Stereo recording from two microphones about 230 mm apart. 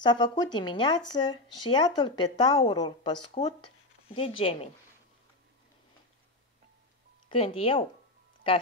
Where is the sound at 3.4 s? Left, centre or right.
Left.